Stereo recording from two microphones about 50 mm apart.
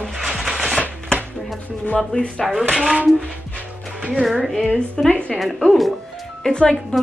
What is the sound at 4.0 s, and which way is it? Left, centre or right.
Speech, centre.